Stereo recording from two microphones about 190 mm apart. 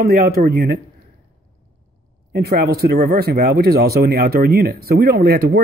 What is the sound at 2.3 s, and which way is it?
Speech, 55° right (ahead or behind).